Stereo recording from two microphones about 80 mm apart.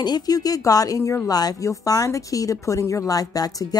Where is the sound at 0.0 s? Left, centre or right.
Left.